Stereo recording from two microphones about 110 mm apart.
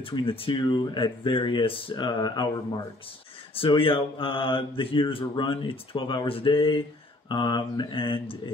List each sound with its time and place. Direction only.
0.0 s mantra: 55° left (ahead or behind)
0.5 s mantra: 35° left (ahead or behind)
3.5 s mantra: 55° left (ahead or behind)